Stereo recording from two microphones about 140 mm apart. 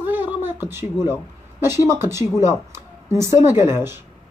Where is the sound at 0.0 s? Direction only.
10° right (ahead or behind).